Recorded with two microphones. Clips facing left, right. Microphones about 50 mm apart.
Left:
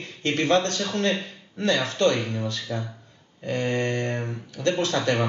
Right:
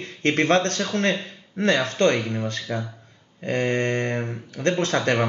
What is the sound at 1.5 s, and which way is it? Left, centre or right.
Mantra, right.